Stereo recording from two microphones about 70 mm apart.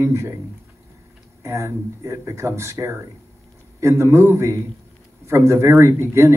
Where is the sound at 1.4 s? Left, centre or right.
Right.